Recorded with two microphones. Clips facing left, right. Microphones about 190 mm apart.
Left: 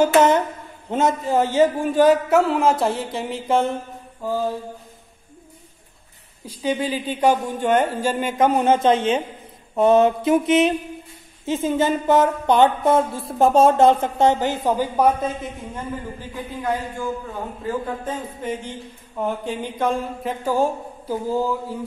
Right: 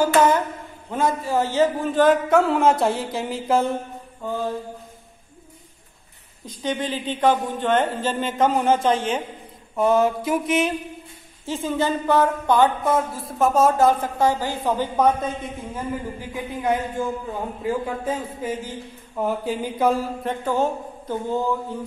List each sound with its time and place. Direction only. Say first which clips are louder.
0.0 s a sound: left 2 dB; 20° left (ahead or behind)
0.8 s a man's voice: left 3 dB; 20° left (ahead or behind); by 3.7 s centre (ahead or behind)
6.4 s a woman's voice: left 3 dB; 10° left (ahead or behind)
14.6 s a woman's voice: right 2 dB; 15° left (ahead or behind)
15.7 s a man's voice: right 4 dB; 15° right (ahead or behind)
20.4 s a woman's voice: left 2 dB; 10° left (ahead or behind)